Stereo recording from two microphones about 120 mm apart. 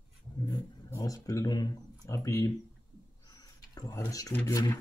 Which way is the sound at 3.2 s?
35° left (ahead or behind).